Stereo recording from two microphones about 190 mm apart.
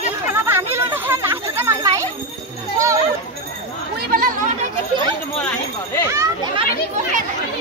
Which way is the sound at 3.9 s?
50° right (ahead or behind).